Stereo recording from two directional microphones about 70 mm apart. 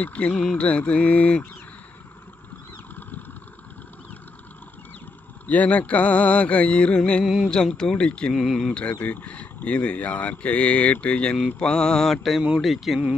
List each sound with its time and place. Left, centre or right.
0.0 s speech: centre
5.5 s speech: left; by 8.7 s centre
9.0 s speech: left; by 13.0 s centre